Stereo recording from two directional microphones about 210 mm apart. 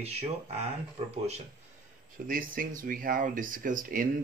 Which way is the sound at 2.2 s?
40° right (ahead or behind).